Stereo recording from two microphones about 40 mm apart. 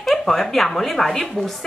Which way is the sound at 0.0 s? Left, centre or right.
Centre.